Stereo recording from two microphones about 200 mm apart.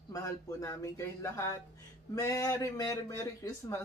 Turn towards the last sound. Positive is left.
turn(degrees=15)  # may be behind; listen again after turning